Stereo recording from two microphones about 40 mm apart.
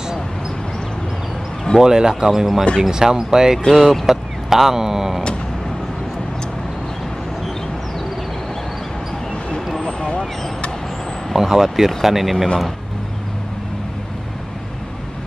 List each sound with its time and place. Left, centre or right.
1.8 s speech: centre
3.7 s speech: centre
4.1 s speech: centre
9.8 s vehicle: left
11.3 s speech: centre